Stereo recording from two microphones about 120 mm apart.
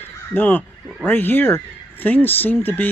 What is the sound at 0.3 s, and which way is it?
Speech, 15° left (ahead or behind).